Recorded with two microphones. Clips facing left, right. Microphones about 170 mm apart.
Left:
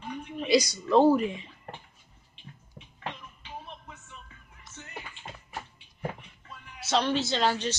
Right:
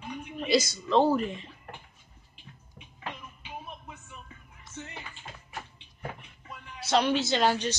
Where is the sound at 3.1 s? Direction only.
10° right (ahead or behind).